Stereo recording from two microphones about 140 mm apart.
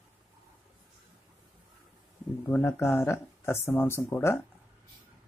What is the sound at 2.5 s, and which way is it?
Speech, 15° left (ahead or behind).